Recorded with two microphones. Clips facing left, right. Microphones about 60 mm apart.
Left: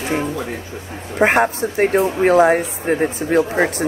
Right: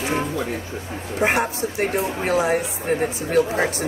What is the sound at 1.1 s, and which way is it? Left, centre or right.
Speech, left.